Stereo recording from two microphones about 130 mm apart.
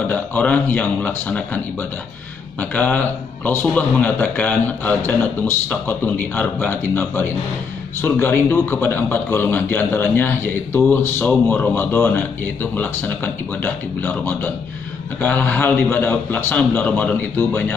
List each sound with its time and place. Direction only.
0.1 s speech: 10° left (ahead or behind)
2.7 s speech: 10° left (ahead or behind)